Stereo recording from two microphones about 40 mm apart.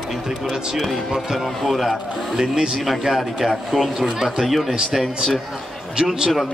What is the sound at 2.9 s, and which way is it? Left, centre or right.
A man's voice, centre.